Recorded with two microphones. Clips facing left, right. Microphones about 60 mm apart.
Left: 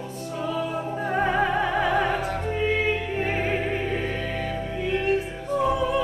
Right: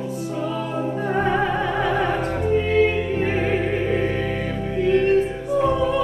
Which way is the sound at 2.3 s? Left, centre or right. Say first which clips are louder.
Right 7 dB; centre.